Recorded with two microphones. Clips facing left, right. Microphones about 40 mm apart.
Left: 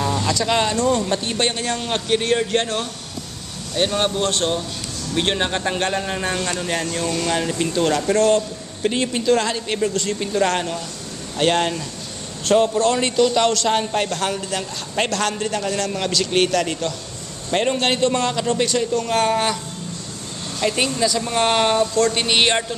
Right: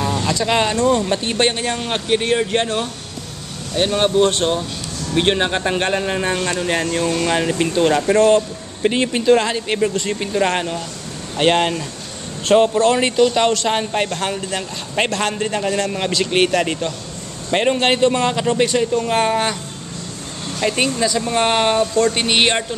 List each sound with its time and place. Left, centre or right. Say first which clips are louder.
0.0 s speech: right 1 dB; centre
20.6 s speech: right 2 dB; centre